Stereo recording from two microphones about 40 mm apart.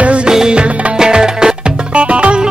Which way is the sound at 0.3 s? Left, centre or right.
Centre.